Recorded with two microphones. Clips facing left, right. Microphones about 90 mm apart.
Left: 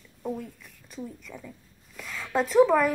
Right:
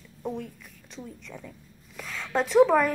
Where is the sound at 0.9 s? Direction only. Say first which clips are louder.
Left 2 dB; 5° left (ahead or behind).